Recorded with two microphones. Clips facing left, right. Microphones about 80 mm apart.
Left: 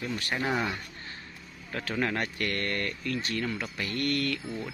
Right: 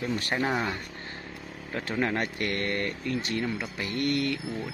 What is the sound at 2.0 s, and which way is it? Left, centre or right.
Speech, right.